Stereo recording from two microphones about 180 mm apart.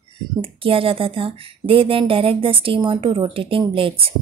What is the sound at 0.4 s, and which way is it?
A woman's voice, 30° right (ahead or behind).